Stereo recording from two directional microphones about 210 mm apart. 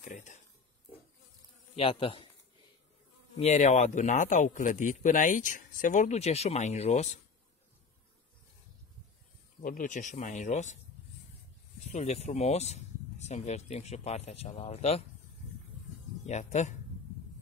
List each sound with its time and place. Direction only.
0.0 s speech: 35° left (ahead or behind)
1.8 s speech: 25° left (ahead or behind)
3.3 s a man's voice: 35° left (ahead or behind)
9.6 s a man's voice: 40° left (ahead or behind)
11.9 s a man's voice: 30° left (ahead or behind)
16.3 s a man's voice: 35° left (ahead or behind)